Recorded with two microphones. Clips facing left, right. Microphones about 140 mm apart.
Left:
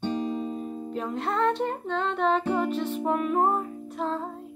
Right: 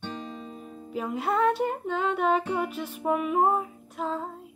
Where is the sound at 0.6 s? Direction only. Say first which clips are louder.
Left 8 dB; 25° left (ahead or behind).